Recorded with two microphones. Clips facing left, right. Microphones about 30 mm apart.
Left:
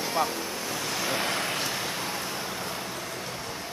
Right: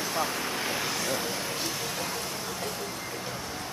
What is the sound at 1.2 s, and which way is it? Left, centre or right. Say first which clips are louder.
Vehicle: left 4 dB; left.